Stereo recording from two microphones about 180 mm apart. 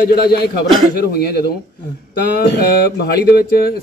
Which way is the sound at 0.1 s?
60° left (ahead or behind).